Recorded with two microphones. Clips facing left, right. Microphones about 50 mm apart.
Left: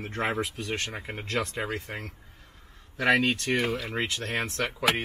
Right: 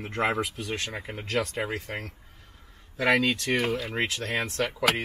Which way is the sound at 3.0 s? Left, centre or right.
Left.